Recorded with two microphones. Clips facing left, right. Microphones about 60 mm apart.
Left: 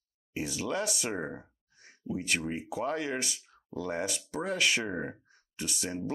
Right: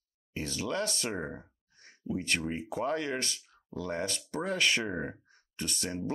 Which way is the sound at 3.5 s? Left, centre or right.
Left.